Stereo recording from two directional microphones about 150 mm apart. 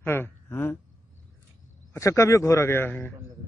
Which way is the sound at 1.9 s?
20° left (ahead or behind).